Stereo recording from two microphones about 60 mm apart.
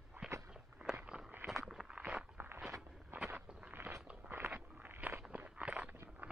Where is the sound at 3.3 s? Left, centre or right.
Right.